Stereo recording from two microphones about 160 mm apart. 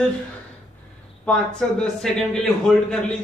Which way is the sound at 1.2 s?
5° left (ahead or behind).